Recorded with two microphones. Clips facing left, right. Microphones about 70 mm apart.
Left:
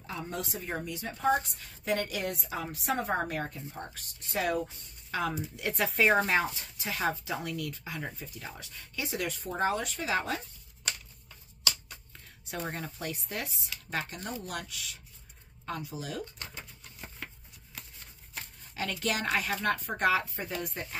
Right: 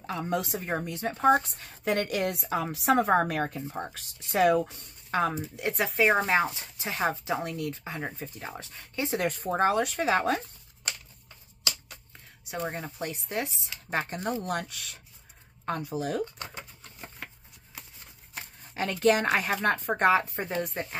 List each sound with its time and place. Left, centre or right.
0.0 s a woman's voice: right
2.7 s a woman's voice: right
5.1 s speech: right
5.6 s speech: centre
6.1 s speech: right
9.7 s a woman's voice: right
12.4 s speech: centre
12.8 s speech: right
14.4 s a woman's voice: right
18.8 s speech: right